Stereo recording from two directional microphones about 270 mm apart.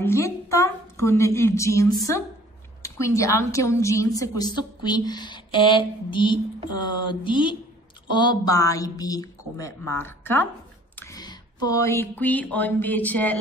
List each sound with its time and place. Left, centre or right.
0.0 s a woman's voice: centre